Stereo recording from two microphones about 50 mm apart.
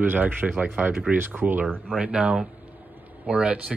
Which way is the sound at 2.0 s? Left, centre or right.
Right.